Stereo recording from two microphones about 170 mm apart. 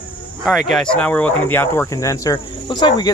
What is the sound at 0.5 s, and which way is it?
Speech, centre (ahead or behind).